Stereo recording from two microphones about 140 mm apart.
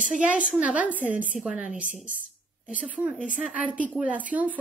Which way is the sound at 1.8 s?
65° right (ahead or behind).